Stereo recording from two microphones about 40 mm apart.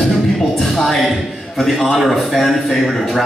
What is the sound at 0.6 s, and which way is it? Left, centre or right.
A man's voice, centre.